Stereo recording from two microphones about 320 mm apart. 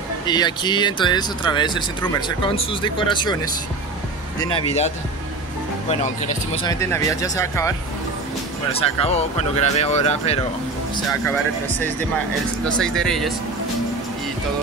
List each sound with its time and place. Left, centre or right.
0.3 s speech: centre
4.4 s speech: centre
6.6 s speech: centre
8.7 s speech: centre
12.6 s speech: centre